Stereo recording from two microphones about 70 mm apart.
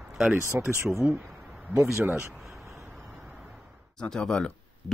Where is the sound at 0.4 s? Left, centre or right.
Right.